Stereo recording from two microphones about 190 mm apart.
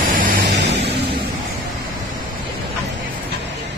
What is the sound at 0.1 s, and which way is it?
Vehicle, 45° right (ahead or behind).